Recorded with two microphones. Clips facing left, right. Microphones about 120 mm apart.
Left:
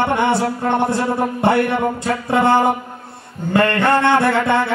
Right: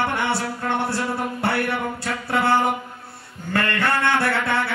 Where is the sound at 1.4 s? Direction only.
20° left (ahead or behind).